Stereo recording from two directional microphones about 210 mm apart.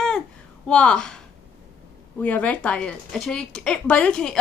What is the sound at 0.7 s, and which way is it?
Speech, 5° left (ahead or behind).